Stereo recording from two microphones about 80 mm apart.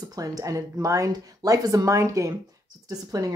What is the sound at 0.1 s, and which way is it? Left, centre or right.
A woman's voice, right.